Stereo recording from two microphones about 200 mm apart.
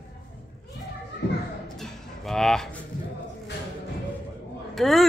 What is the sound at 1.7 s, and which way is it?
Music, centre (ahead or behind).